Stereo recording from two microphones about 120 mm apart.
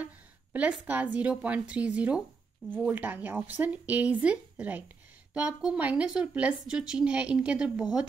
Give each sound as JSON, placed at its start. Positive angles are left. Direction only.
{"t": 0.0, "sound": "a woman's voice", "side_deg": -15}